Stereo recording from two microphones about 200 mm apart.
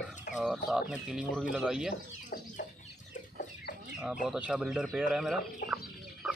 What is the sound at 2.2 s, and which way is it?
Chicken, 40° left (ahead or behind).